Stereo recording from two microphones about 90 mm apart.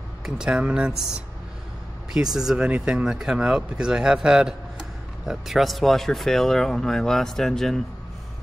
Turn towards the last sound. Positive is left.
turn(degrees=5)  # may be behind; listen again after turning